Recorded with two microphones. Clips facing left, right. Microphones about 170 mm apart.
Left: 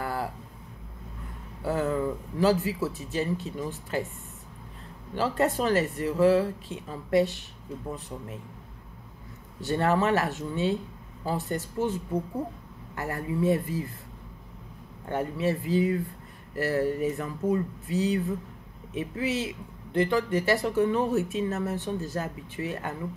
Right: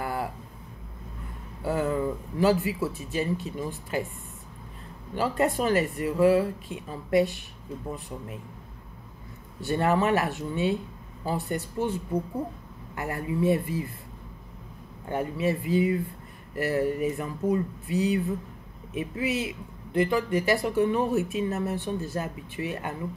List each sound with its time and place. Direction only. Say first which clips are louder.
0.0 s a sound: right 1 dB; 15° right (ahead or behind)
1.6 s a sound: even; 15° right (ahead or behind)
2.6 s speech: right 1 dB; 15° right (ahead or behind)
5.1 s speech: even; 15° right (ahead or behind)
9.6 s speech: right 1 dB; 15° right (ahead or behind)
15.0 s speech: even; 15° right (ahead or behind)